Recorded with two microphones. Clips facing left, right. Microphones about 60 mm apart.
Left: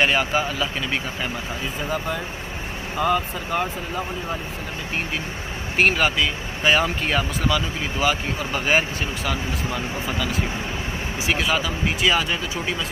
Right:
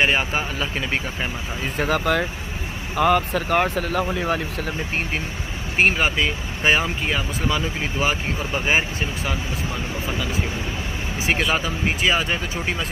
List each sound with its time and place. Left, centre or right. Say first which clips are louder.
0.0 s speech: left 1 dB; right
1.8 s speech: right 7 dB; right
3.0 s speech: right 4 dB; right
5.8 s speech: even; right
6.8 s speech: left 2 dB; centre
7.4 s speech: even; right
11.5 s speech: even; right